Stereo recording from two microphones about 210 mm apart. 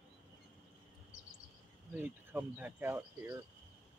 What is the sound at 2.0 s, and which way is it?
Speech, 10° right (ahead or behind).